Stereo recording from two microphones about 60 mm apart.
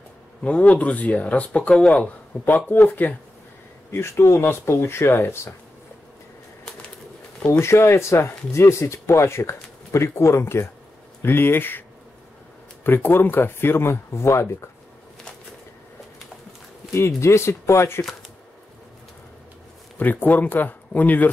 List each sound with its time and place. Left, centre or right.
0.4 s speech: left
1.7 s speech: centre; by 3.1 s left
3.9 s speech: left
7.6 s speech: left
12.8 s speech: left
16.9 s speech: left
20.0 s speech: left